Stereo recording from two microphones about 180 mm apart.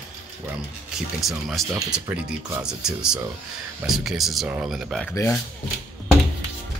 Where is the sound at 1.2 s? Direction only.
Centre (ahead or behind).